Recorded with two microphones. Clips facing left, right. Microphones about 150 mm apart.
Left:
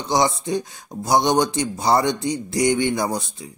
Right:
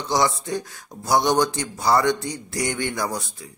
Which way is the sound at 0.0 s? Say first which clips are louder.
Left 2 dB; 20° left (ahead or behind).